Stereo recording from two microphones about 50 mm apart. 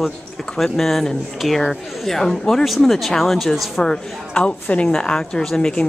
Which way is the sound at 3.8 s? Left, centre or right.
Left.